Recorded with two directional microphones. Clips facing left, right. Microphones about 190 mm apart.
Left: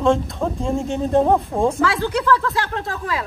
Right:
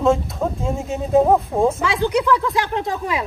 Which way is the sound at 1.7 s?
15° right (ahead or behind).